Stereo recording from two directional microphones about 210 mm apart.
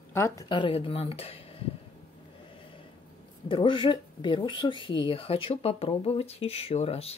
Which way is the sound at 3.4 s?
20° left (ahead or behind).